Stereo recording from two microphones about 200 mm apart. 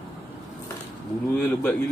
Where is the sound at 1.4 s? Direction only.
10° left (ahead or behind).